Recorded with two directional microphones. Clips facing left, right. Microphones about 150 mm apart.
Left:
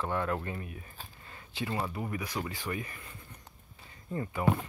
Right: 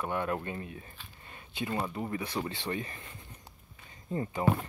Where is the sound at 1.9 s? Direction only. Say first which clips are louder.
Right 1 dB; 25° right (ahead or behind).